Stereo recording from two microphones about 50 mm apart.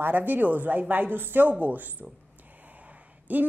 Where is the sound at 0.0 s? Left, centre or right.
Right.